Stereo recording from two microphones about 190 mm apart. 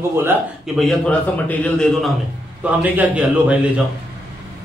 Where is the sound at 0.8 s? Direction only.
5° left (ahead or behind).